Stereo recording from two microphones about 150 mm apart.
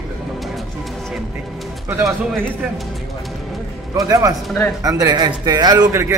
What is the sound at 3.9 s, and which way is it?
Speech, 25° right (ahead or behind).